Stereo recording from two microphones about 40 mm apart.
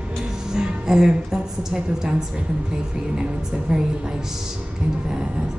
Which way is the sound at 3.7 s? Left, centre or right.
Centre.